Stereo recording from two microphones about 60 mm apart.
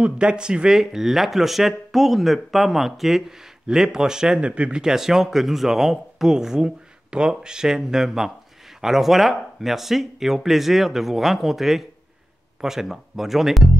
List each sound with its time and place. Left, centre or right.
0.0 s speech: centre